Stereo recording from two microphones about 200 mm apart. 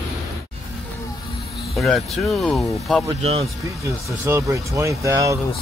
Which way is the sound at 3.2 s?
30° right (ahead or behind).